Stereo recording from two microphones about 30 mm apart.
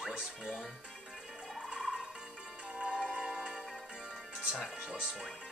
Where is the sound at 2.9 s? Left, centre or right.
Right.